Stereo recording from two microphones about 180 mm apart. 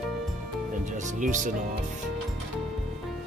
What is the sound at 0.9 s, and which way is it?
Speech, 45° right (ahead or behind).